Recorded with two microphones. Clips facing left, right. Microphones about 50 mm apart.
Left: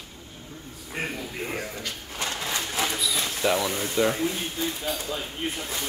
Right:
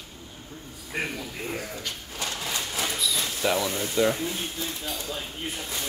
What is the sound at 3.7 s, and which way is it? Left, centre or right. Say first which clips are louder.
Speech: even; left.